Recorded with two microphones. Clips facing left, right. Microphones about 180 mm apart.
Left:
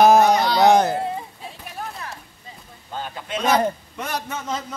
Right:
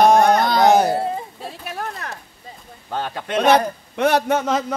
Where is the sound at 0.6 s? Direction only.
Centre (ahead or behind).